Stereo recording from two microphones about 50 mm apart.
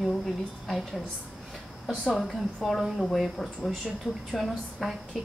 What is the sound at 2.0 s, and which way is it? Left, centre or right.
A woman's voice, centre.